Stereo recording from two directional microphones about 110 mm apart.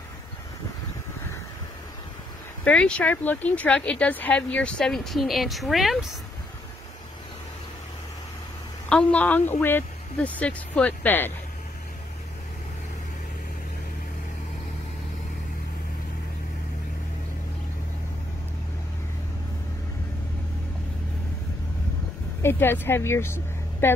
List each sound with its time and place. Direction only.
2.6 s speech: 10° left (ahead or behind)
8.8 s speech: 10° left (ahead or behind)
22.4 s a woman's voice: 20° left (ahead or behind)